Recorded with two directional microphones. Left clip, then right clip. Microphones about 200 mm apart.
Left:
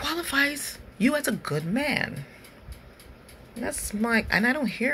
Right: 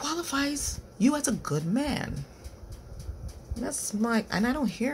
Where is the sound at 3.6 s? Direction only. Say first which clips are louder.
Left 2 dB; 10° right (ahead or behind).